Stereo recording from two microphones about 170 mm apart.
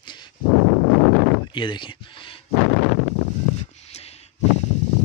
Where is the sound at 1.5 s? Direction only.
25° left (ahead or behind).